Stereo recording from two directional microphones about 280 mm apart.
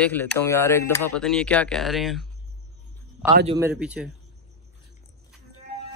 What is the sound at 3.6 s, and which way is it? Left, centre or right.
Speech, centre.